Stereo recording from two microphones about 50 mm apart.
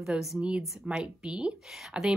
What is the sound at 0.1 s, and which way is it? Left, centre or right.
A woman's voice, right.